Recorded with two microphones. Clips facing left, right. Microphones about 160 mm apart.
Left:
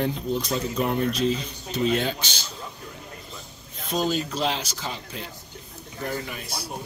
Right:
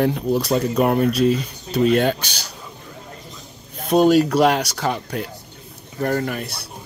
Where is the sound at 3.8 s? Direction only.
65° right (ahead or behind).